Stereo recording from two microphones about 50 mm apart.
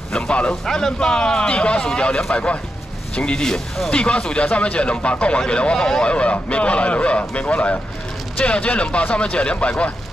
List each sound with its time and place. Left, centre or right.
0.1 s a man's voice: centre
3.9 s speech: left